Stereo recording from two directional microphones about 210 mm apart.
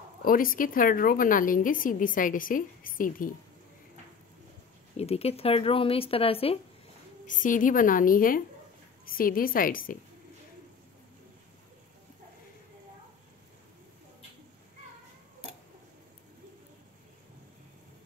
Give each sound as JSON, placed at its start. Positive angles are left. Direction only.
{"t": 0.2, "sound": "a woman's voice", "side_deg": 40}
{"t": 4.9, "sound": "speech", "side_deg": 30}
{"t": 7.2, "sound": "a woman's voice", "side_deg": 40}